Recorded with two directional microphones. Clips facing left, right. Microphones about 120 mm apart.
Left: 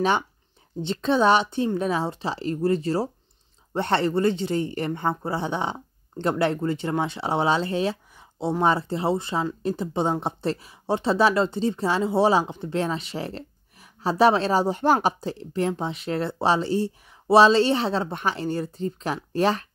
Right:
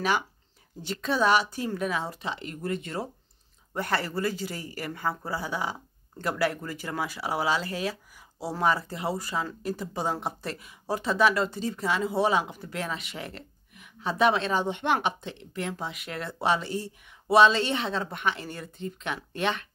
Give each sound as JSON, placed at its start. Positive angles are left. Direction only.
{"t": 0.8, "sound": "speech", "side_deg": 30}